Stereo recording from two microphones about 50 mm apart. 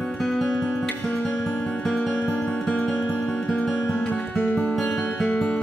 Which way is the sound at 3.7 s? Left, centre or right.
Centre.